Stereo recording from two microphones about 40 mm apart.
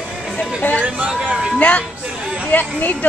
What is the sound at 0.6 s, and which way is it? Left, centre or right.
Speech, left.